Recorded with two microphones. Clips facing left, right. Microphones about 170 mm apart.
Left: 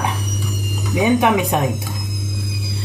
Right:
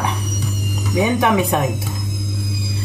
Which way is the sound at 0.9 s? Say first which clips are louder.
Left 1 dB; 20° left (ahead or behind).